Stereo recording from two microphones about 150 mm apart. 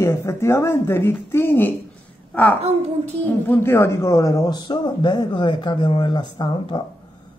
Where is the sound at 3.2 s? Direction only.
15° left (ahead or behind); by 6.8 s 30° left (ahead or behind).